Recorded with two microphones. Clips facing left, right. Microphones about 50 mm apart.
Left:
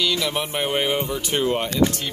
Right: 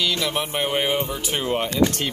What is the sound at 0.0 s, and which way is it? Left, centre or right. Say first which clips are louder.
Speech: left 1 dB; centre.